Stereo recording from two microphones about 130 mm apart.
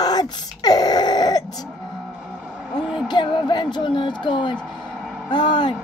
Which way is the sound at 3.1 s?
35° left (ahead or behind).